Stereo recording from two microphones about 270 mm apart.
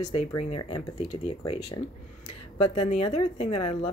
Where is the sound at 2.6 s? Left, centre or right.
Left.